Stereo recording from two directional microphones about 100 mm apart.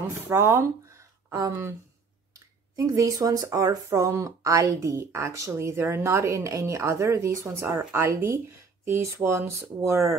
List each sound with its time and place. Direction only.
0.3 s speech: 25° right (ahead or behind)